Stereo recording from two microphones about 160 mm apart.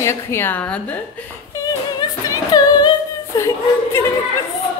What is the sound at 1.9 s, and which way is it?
Singing, 25° left (ahead or behind).